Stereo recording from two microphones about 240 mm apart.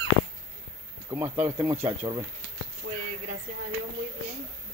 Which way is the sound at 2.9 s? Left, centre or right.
Right.